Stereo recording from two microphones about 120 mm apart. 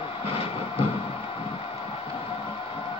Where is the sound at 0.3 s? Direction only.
55° left (ahead or behind).